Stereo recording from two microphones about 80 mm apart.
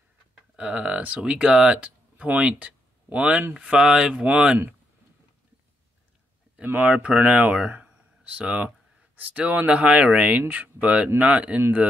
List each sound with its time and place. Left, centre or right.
0.6 s speech: centre
6.6 s speech: right